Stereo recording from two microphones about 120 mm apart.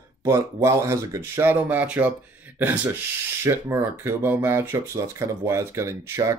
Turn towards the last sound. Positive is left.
turn(degrees=-25)  # may be behind; listen again after turning